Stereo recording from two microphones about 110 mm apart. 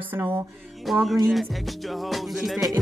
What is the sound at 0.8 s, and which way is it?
Music, centre (ahead or behind).